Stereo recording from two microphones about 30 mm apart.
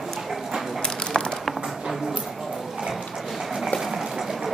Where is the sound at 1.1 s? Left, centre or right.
Left.